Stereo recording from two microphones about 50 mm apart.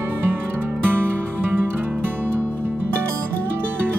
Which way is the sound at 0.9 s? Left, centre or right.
Right.